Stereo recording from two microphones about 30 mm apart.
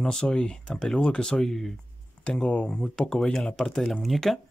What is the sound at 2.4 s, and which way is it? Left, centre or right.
Speech, left.